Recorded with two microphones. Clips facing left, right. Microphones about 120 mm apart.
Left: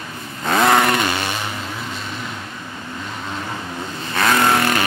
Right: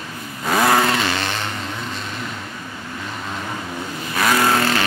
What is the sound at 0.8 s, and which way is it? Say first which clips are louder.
Chainsaw: left 1 dB; 60° left (ahead or behind).